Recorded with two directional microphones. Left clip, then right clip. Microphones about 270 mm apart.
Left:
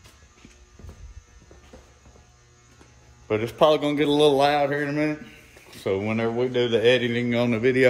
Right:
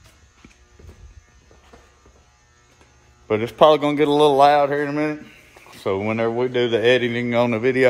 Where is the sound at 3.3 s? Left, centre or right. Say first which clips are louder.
Right 5 dB; right.